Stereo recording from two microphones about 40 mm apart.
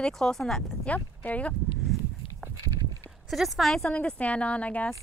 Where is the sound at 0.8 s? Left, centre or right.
Left.